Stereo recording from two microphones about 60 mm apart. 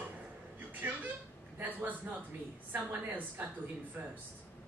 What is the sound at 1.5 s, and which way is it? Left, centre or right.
A man's voice, right.